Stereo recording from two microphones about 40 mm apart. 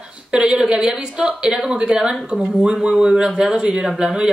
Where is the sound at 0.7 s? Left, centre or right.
Centre.